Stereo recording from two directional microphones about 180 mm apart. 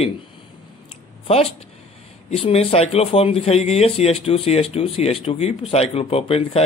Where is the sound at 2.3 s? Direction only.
35° left (ahead or behind).